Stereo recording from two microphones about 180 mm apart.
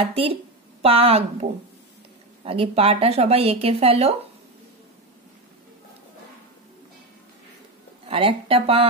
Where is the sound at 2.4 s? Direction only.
30° right (ahead or behind).